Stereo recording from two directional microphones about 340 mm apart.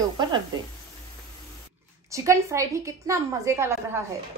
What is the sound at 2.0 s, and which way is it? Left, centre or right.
A woman's voice, centre.